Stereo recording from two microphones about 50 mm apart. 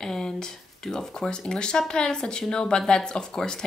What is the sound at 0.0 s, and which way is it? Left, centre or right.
Speech, centre.